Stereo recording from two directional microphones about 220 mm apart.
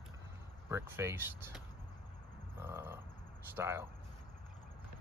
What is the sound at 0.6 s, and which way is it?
Speech, 10° right (ahead or behind).